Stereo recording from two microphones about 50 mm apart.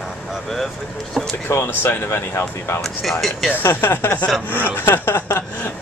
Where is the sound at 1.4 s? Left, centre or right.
Left.